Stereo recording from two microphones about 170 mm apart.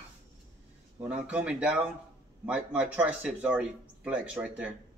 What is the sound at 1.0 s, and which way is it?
Speech, 5° right (ahead or behind).